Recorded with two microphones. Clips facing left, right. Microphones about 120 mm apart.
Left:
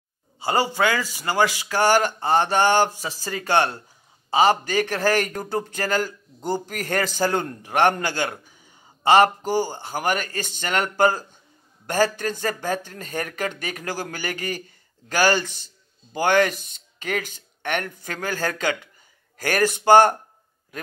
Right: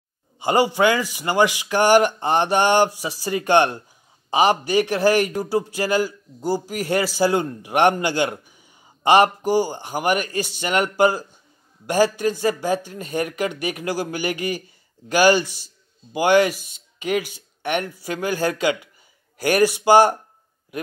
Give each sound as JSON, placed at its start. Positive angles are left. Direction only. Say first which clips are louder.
{"t": 0.4, "sound": "a man's voice", "louder": "right 4 dB", "side_deg": -15}